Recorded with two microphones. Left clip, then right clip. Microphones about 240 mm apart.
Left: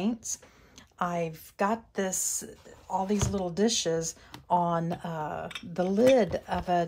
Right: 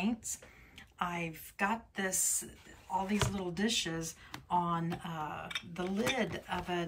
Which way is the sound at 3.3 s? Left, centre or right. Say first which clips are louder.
Left 7 dB; centre.